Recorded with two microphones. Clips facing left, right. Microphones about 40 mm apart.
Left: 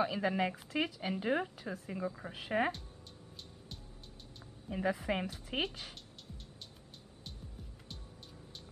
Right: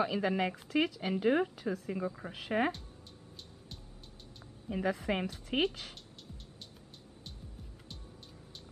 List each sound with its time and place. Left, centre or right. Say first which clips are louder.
0.0 s speech: right 1 dB; centre
4.6 s speech: right 1 dB; centre
5.5 s speech: right 5 dB; centre